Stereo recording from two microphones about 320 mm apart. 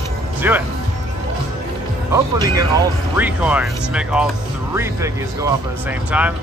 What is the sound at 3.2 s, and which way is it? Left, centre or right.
Speech, centre.